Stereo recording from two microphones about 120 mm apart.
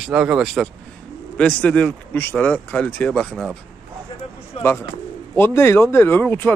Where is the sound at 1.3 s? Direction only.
10° left (ahead or behind).